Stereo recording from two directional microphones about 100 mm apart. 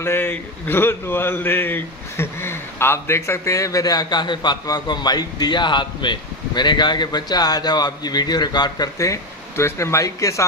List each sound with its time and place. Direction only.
0.0 s speech: 20° left (ahead or behind)